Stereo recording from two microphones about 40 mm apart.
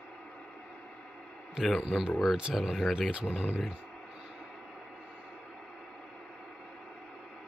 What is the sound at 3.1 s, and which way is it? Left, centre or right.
Speech, right.